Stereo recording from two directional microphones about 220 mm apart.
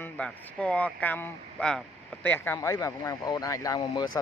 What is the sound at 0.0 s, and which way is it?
Speech, 5° left (ahead or behind).